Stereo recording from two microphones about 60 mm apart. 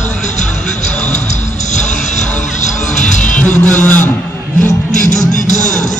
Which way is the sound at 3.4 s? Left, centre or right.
Left.